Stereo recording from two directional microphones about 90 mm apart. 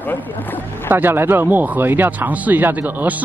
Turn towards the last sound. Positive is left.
turn(degrees=-20)  # may be behind; listen again after turning